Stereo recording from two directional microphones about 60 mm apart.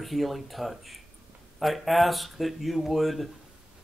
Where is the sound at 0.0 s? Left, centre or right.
Centre.